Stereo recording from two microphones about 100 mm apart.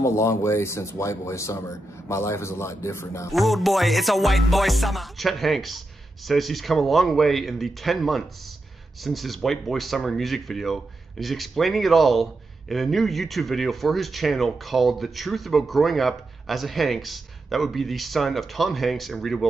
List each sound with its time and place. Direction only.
0.0 s speech: 30° left (ahead or behind)
3.3 s speech: centre (ahead or behind)